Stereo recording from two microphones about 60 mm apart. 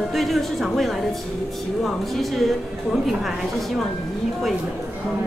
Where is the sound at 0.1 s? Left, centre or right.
Centre.